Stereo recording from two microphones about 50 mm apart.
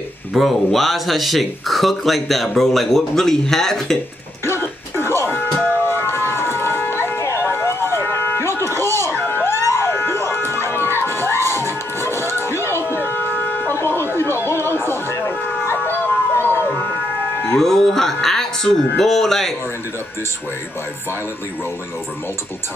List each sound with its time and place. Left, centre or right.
0.4 s speech: centre
4.5 s music: left
5.9 s siren: left
7.5 s vehicle: left
9.4 s emergency vehicle: right
9.8 s emergency vehicle: left
10.6 s music: left
13.7 s a sound: left
14.1 s music: left
15.6 s emergency vehicle: left
17.5 s music: centre